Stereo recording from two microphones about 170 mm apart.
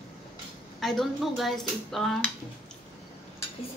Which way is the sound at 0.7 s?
Centre (ahead or behind).